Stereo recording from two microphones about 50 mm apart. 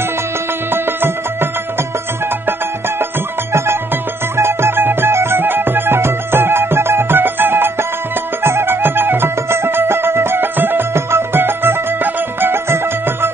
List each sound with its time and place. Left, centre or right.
0.7 s music: right
4.4 s music: right